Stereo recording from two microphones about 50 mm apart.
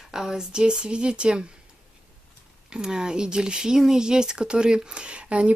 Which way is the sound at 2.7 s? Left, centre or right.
Centre.